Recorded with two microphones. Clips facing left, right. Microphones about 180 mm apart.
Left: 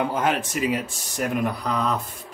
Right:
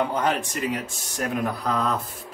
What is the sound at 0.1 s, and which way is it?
Speech, centre (ahead or behind).